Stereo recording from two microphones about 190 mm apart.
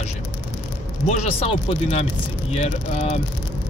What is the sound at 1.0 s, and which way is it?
Speech, 35° left (ahead or behind).